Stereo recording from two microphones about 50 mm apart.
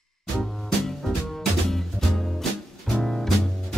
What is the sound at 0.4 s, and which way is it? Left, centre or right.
Music, centre.